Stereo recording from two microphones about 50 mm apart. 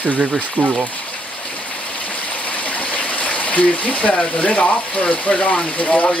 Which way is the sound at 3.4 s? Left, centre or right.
Left.